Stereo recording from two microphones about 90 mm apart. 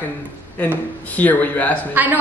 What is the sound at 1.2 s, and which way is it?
Speech, 20° left (ahead or behind).